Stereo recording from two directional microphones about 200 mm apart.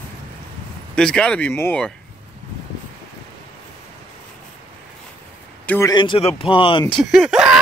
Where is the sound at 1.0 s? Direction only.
5° left (ahead or behind).